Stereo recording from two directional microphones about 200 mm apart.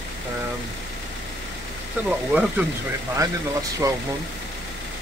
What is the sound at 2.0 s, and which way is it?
Speech, 10° right (ahead or behind).